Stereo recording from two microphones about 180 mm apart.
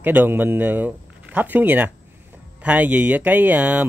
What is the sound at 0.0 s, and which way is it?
Speech, 10° right (ahead or behind).